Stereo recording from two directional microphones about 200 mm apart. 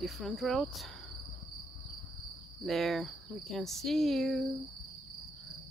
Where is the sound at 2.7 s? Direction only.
Centre (ahead or behind).